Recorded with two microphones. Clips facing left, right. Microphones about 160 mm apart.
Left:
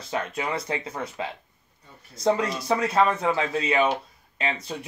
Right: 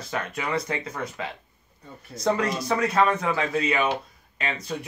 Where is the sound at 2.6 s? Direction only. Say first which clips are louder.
Left 1 dB; 25° left (ahead or behind).